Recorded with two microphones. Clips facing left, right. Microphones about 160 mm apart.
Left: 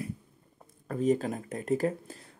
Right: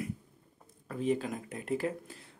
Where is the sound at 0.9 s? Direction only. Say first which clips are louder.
Left 4 dB; 45° left (ahead or behind).